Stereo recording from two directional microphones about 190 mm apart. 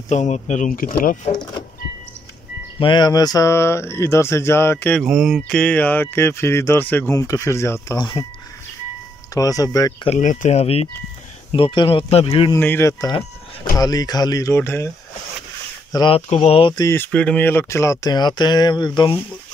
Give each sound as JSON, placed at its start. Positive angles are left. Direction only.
{"t": 0.1, "sound": "speech", "side_deg": 35}
{"t": 2.8, "sound": "speech", "side_deg": 25}
{"t": 5.0, "sound": "speech", "side_deg": 0}
{"t": 9.3, "sound": "speech", "side_deg": 20}
{"t": 10.0, "sound": "speech", "side_deg": 40}
{"t": 12.5, "sound": "speech", "side_deg": 10}
{"t": 15.9, "sound": "speech", "side_deg": 20}
{"t": 16.2, "sound": "speech", "side_deg": 35}